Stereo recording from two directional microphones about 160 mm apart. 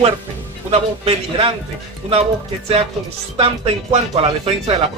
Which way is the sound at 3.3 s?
40° right (ahead or behind).